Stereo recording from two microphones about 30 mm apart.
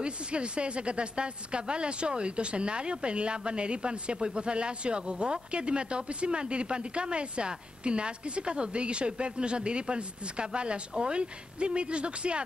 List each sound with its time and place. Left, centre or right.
0.0 s a woman's voice: right